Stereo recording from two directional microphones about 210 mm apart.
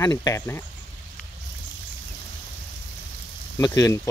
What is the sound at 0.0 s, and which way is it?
Speech, 15° left (ahead or behind).